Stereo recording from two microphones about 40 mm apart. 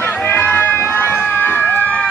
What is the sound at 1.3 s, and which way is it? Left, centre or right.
Crowd, left.